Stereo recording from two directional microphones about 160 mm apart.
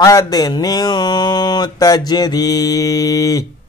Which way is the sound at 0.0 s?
20° left (ahead or behind).